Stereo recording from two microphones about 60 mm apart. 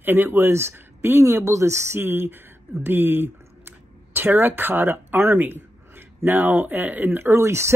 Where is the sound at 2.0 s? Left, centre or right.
Right.